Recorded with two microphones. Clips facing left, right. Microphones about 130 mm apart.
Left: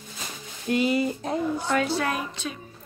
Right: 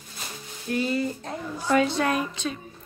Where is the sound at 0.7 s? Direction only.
15° left (ahead or behind).